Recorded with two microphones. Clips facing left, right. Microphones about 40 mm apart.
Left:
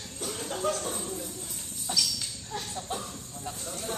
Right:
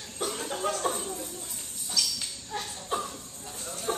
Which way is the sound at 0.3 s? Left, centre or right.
Centre.